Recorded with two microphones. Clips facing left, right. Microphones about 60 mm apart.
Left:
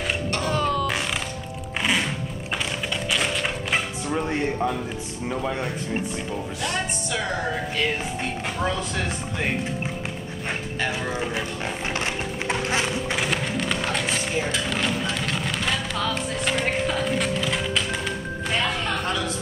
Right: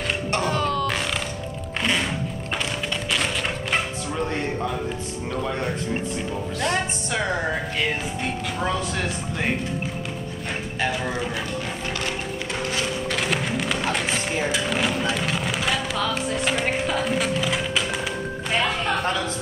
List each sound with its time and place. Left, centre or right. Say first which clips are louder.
0.5 s music: left 2 dB; centre
4.1 s speech: left 2 dB; centre
8.6 s speech: right 2 dB; centre
12.0 s a sound: even; left
13.2 s music: right 1 dB; centre